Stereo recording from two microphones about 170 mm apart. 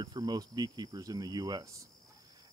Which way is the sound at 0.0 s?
25° right (ahead or behind).